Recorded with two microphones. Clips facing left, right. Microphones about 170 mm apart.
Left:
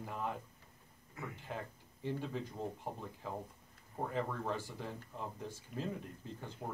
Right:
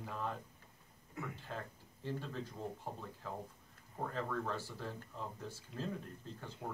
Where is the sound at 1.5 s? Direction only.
15° left (ahead or behind).